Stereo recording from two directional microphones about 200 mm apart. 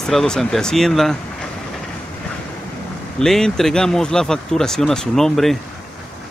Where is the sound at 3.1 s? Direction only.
5° left (ahead or behind).